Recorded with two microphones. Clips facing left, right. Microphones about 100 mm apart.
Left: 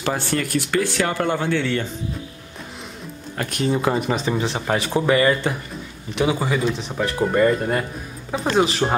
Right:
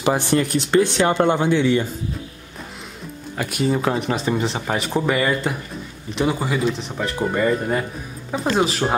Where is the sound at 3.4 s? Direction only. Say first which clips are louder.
Right 1 dB; 5° right (ahead or behind).